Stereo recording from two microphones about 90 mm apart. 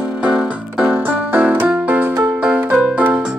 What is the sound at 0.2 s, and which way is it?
Keyboard, 10° right (ahead or behind).